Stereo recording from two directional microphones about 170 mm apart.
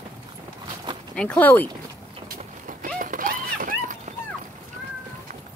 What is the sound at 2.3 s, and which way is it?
Clip-clop, 55° right (ahead or behind).